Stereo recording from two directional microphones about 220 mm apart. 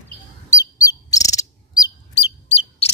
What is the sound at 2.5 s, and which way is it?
Bird, 25° left (ahead or behind).